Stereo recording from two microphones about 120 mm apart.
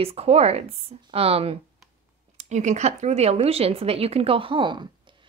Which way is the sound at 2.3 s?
80° right.